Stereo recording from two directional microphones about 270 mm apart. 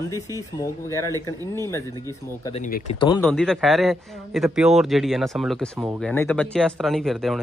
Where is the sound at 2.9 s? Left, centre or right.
Centre.